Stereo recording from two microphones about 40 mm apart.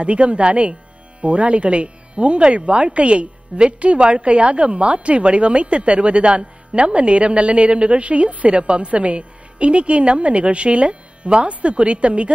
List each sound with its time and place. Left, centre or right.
0.0 s speech: right